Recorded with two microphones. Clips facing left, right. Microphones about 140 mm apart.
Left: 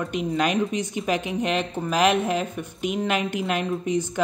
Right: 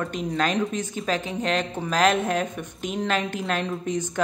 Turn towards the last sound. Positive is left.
turn(degrees=10)  # may be behind; listen again after turning